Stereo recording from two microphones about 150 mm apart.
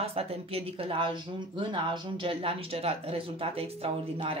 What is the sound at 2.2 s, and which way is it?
Speech, 35° right (ahead or behind).